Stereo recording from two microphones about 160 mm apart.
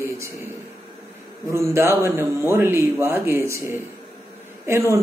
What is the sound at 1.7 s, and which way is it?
Speech, 15° right (ahead or behind).